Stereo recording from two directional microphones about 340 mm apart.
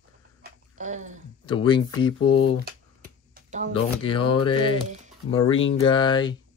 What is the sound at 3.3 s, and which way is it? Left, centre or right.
Shuffling cards, right.